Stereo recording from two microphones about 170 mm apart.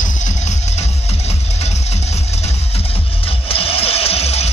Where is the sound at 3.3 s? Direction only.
35° left (ahead or behind).